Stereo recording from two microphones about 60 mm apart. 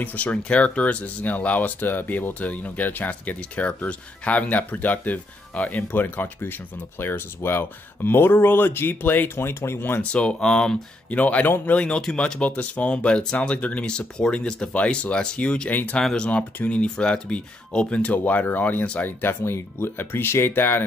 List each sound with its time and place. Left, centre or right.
0.0 s speech: left
10.1 s speech: centre
11.1 s speech: left
15.7 s speech: left
16.0 s speech: centre
16.5 s speech: left
19.0 s speech: left